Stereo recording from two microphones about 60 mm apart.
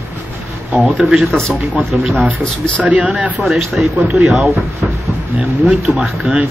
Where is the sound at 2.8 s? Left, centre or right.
Centre.